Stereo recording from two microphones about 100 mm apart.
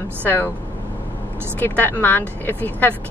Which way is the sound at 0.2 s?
20° left (ahead or behind).